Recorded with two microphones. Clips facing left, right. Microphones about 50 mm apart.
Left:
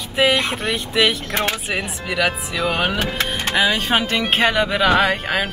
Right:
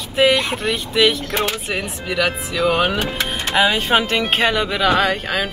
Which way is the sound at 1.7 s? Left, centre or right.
Centre.